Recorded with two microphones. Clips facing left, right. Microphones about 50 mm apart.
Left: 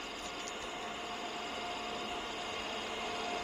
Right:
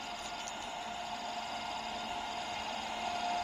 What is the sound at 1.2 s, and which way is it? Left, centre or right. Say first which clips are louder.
Vehicle: right 1 dB; centre.